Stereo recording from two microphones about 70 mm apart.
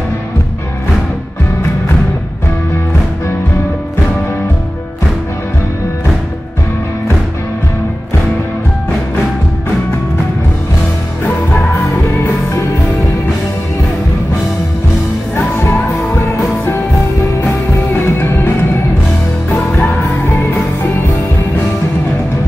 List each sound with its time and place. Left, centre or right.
15.3 s music: left
17.9 s music: left
19.5 s music: left